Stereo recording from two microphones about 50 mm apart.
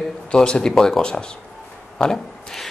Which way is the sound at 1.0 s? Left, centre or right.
Centre.